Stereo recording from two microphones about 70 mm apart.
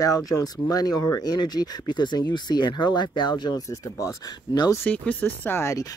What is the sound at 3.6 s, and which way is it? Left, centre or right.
Speech, left.